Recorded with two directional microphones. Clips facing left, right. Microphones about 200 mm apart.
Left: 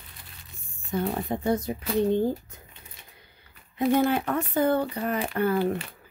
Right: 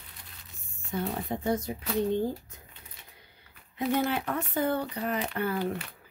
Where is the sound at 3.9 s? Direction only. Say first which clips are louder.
Left 5 dB; 50° left (ahead or behind).